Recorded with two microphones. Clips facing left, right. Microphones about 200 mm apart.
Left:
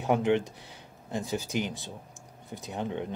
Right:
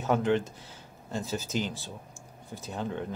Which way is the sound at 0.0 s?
15° left (ahead or behind).